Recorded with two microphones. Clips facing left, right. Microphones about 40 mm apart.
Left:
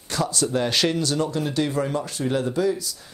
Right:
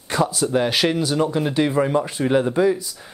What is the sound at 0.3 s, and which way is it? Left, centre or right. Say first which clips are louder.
Speech: right 3 dB; centre.